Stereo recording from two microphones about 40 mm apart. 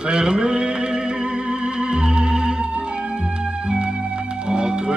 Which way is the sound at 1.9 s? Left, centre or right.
Right.